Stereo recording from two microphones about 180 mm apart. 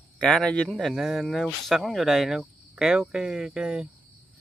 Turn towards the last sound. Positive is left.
turn(degrees=-5)  # may be behind; listen again after turning